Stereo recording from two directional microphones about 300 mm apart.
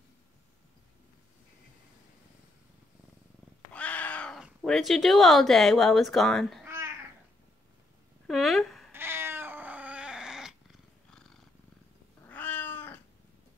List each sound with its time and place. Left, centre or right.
3.7 s cat: centre
8.3 s cat: centre